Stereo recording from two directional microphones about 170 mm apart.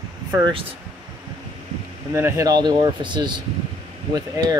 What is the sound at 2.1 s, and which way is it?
Speech, 15° right (ahead or behind).